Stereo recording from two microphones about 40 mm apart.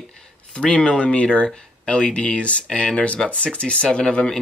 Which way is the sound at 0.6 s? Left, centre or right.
Left.